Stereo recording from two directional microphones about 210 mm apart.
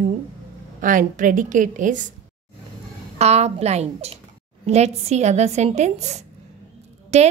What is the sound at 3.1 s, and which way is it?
A woman's voice, 30° right (ahead or behind).